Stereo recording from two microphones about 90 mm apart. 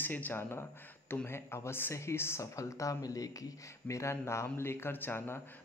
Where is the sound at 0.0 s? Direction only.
20° left (ahead or behind).